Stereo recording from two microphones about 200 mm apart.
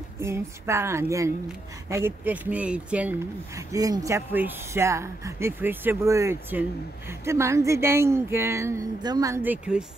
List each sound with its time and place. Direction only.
0.2 s speech: 15° right (ahead or behind)